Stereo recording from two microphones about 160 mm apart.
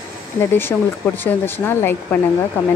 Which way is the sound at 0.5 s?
15° left (ahead or behind).